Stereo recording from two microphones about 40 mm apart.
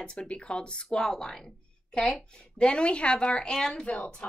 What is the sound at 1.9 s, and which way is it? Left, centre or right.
Speech, left.